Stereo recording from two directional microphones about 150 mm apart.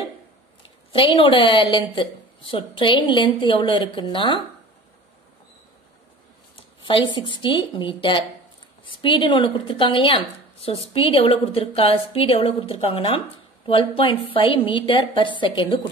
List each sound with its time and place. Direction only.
0.9 s a woman's voice: 35° left (ahead or behind)
6.5 s a sound: 35° left (ahead or behind)
7.2 s a woman's voice: 30° left (ahead or behind)